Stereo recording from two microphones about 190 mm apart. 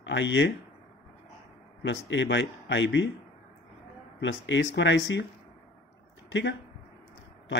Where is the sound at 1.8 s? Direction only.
70° left (ahead or behind).